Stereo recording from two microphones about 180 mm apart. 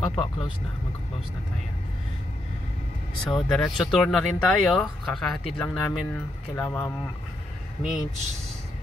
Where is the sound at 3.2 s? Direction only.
Centre (ahead or behind).